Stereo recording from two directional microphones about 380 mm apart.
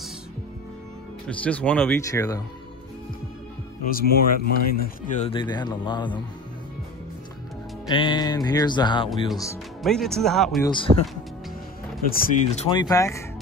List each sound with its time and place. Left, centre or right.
1.4 s speech: centre
3.8 s speech: left
7.9 s music: centre
9.3 s speech: centre
10.9 s speech: centre
12.1 s music: centre